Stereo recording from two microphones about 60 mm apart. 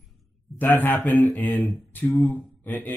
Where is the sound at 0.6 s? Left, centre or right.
Left.